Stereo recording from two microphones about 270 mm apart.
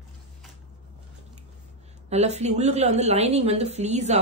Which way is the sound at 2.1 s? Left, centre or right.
Right.